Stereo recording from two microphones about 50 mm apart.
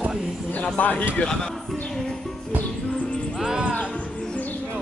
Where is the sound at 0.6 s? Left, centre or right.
Left.